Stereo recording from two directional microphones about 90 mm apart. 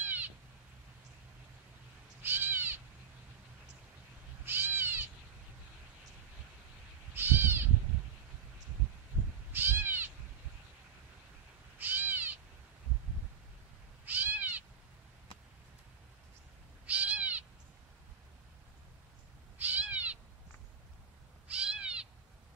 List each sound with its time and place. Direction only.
0.0 s cat: 20° right (ahead or behind)
2.2 s owl: 20° right (ahead or behind)
4.5 s cat: 25° right (ahead or behind)
7.2 s crow: 25° right (ahead or behind)
9.5 s cat: 25° right (ahead or behind)
11.8 s owl: 20° right (ahead or behind)
14.0 s cat: 20° right (ahead or behind)
16.8 s owl: 15° right (ahead or behind)
19.6 s owl: 20° right (ahead or behind)
21.5 s owl: 10° right (ahead or behind)